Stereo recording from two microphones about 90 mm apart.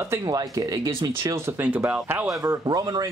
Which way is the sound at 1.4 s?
20° right (ahead or behind).